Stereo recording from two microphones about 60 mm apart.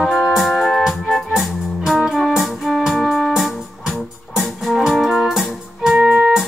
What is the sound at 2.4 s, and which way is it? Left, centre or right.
Music, centre.